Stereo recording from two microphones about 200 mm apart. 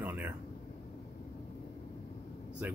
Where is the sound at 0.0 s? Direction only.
10° right (ahead or behind).